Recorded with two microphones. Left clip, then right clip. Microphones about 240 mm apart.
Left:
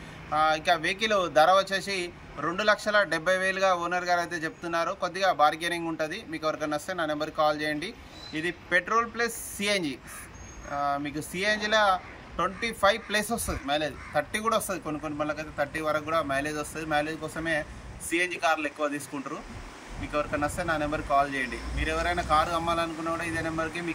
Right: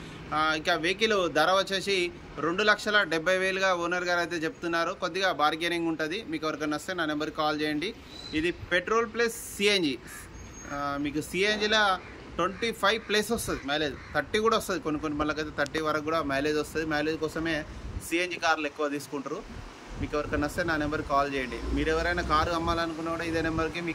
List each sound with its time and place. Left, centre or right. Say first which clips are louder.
0.3 s speech: left 3 dB; centre
20.1 s speech: left 1 dB; centre
20.7 s speech: left 3 dB; centre